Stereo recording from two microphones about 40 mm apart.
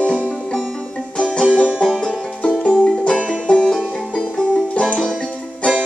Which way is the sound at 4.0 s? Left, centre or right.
Centre.